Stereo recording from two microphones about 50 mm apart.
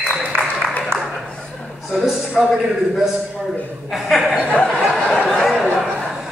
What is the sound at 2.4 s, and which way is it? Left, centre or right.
A man's voice, centre.